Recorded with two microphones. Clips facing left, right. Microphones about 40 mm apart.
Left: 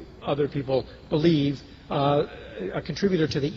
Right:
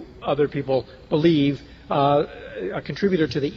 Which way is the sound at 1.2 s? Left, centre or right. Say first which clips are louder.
Right 4 dB; right.